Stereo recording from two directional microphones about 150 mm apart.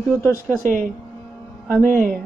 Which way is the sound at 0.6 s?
60° right (ahead or behind).